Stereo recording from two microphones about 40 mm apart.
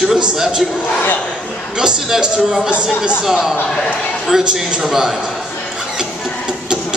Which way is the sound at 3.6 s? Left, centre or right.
Centre.